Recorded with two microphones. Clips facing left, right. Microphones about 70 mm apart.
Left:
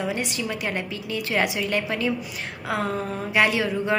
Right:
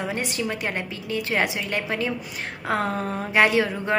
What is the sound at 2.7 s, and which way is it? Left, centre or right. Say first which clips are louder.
A woman's voice: right 1 dB; right.